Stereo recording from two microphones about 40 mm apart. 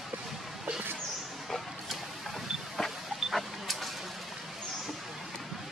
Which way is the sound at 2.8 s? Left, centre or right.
Centre.